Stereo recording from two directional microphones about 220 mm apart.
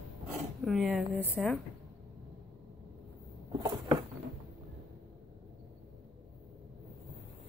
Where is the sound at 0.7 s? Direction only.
Centre (ahead or behind).